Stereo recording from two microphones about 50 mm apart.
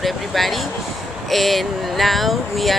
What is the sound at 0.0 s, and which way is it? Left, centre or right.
Speech, centre.